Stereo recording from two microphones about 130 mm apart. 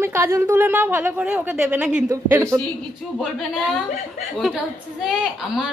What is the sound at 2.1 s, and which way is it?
Speech, 20° right (ahead or behind).